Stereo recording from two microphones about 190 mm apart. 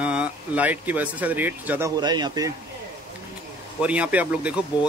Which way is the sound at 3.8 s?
5° right (ahead or behind).